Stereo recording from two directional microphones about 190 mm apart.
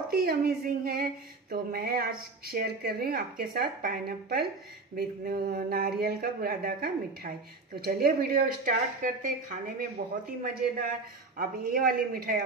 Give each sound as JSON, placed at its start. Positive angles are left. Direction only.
{"t": 0.1, "sound": "a woman's voice", "side_deg": -55}
{"t": 11.3, "sound": "a woman's voice", "side_deg": -50}